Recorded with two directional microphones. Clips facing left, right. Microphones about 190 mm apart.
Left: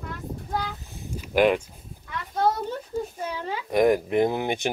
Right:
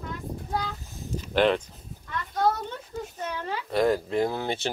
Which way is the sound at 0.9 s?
15° left (ahead or behind).